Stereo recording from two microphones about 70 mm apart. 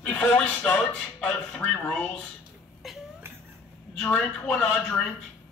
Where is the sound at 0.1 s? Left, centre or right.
Centre.